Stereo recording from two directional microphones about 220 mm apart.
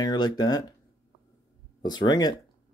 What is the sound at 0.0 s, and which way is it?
Speech, 20° left (ahead or behind).